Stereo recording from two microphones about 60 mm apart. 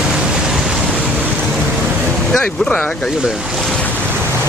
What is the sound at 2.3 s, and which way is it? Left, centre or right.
Speech, centre.